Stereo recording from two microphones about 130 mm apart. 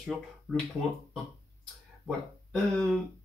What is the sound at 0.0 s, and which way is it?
Speech, centre (ahead or behind).